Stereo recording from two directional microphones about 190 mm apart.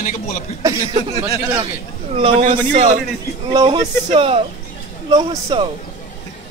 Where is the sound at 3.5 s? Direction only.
20° right (ahead or behind).